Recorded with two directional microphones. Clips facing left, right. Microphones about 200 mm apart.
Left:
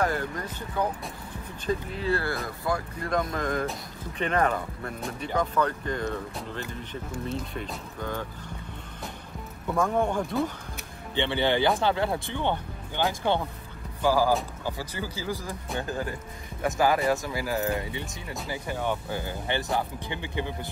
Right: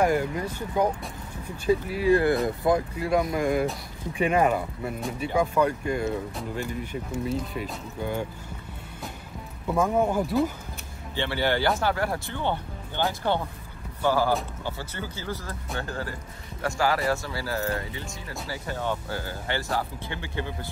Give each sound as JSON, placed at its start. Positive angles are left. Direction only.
{"t": 0.0, "sound": "speech", "side_deg": -10}
{"t": 3.0, "sound": "speech", "side_deg": -5}
{"t": 9.9, "sound": "speech", "side_deg": -5}
{"t": 11.1, "sound": "speech", "side_deg": 20}